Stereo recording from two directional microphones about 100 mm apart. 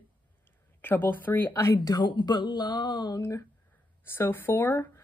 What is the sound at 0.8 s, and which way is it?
Speech, 20° left (ahead or behind).